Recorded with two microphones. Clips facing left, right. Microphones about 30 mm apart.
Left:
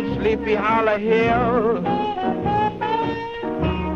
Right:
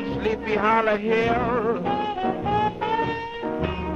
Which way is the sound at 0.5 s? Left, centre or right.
Left.